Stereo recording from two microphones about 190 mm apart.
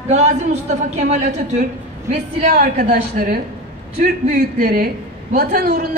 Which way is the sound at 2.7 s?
45° right (ahead or behind).